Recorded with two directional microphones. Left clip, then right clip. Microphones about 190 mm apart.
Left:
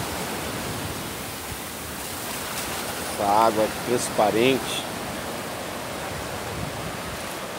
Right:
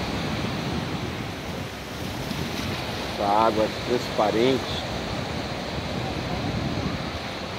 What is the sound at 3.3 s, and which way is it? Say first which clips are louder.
Speech: left 2 dB; 15° left (ahead or behind).